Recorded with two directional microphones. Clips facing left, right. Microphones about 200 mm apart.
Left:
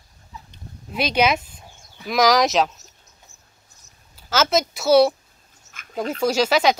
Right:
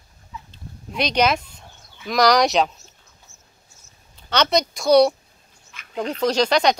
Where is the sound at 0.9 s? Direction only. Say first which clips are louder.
Even; 5° left (ahead or behind).